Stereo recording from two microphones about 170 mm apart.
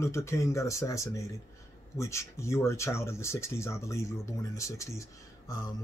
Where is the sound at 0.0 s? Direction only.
15° left (ahead or behind).